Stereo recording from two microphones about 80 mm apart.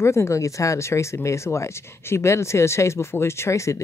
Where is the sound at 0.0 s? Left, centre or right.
Left.